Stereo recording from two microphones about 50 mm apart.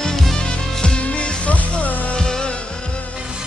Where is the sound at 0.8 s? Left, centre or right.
Left.